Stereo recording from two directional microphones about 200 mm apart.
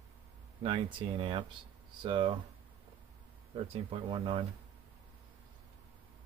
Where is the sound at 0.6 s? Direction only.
25° right (ahead or behind).